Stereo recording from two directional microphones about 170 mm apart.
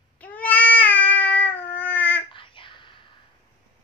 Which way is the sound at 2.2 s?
30° left (ahead or behind).